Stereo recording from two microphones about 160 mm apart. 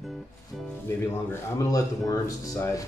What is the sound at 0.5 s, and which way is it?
Music, centre (ahead or behind).